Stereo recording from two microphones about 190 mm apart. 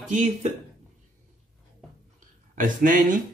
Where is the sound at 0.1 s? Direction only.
40° right (ahead or behind).